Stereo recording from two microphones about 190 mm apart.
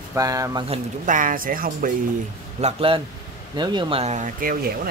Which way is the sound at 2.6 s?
30° right (ahead or behind).